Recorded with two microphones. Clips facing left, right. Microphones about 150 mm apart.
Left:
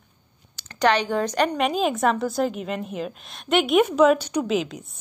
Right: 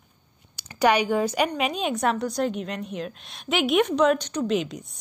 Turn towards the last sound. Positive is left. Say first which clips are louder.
# left 1 dB
turn(degrees=0)  # may be behind; listen again after turning